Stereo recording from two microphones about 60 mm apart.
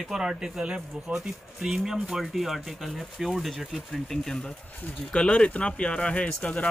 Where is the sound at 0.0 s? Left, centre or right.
Centre.